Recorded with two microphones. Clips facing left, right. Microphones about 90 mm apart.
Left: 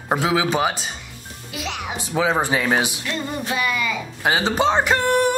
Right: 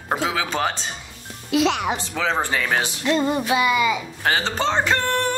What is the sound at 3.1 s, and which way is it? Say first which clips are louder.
Music: right 6 dB; 20° right (ahead or behind).